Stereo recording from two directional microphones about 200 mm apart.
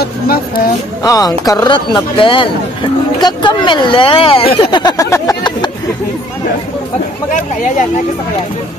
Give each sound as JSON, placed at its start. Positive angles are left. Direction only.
{"t": 1.0, "sound": "speech", "side_deg": 20}